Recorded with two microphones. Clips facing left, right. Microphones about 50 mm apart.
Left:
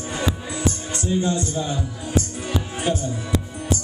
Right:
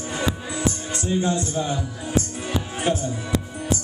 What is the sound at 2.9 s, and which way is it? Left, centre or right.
Speech, right.